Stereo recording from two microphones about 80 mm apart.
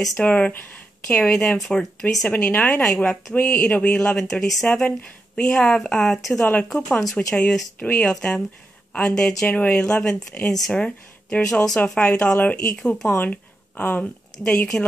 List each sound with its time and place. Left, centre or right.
0.2 s speech: centre
2.2 s speech: centre
6.4 s speech: centre
7.8 s speech: centre
13.1 s speech: left